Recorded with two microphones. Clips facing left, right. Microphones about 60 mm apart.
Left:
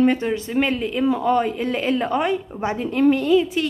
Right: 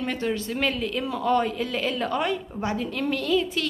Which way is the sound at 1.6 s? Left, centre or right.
Left.